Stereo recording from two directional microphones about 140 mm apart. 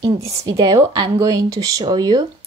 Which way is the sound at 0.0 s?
25° right (ahead or behind).